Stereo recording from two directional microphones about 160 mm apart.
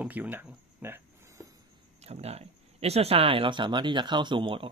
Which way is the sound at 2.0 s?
40° right (ahead or behind).